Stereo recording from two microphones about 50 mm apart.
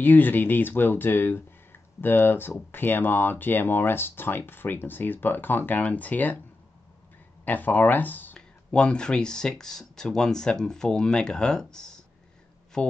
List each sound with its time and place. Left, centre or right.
0.0 s speech: left
7.4 s speech: left
8.4 s speech: centre